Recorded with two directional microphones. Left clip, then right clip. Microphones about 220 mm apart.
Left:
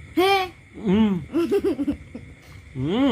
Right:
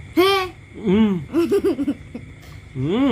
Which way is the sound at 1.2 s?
25° right (ahead or behind).